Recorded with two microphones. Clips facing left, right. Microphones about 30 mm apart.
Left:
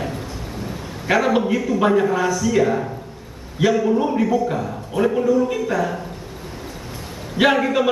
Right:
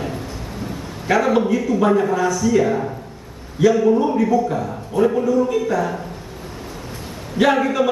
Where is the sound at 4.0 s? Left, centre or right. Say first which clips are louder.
Right 2 dB; centre.